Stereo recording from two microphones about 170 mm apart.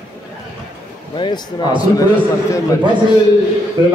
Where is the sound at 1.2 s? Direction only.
25° left (ahead or behind).